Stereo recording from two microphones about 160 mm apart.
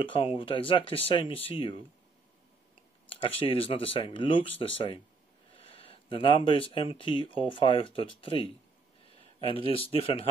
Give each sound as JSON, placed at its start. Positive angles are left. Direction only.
{"t": 0.0, "sound": "speech", "side_deg": 30}
{"t": 3.1, "sound": "speech", "side_deg": 35}
{"t": 9.5, "sound": "speech", "side_deg": 35}